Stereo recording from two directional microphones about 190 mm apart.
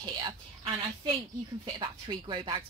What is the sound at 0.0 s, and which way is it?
A woman's voice, 25° right (ahead or behind).